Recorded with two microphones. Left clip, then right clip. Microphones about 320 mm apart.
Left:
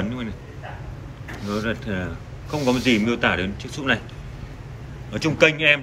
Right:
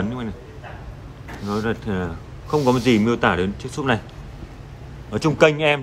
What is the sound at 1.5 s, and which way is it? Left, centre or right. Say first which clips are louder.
A man's voice: right 2 dB; centre.